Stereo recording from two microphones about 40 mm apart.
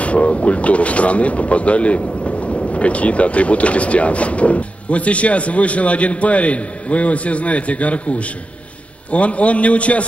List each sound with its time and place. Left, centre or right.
0.0 s speech: left